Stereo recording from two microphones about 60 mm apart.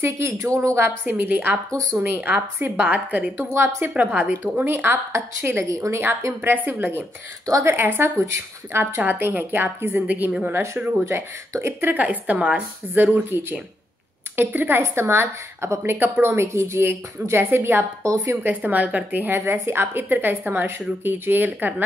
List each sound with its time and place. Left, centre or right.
0.4 s speech: right
1.0 s speech: right
1.7 s speech: right
2.0 s speech: right
3.5 s a woman's voice: right
3.9 s a woman's voice: right
4.6 s speech: right
5.7 s a woman's voice: right
6.4 s a woman's voice: right
11.6 s a woman's voice: right
18.0 s speech: right
18.3 s a woman's voice: right